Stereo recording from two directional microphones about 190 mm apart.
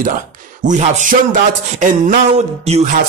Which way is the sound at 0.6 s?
40° right (ahead or behind).